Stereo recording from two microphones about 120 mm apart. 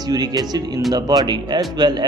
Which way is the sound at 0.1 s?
35° right (ahead or behind).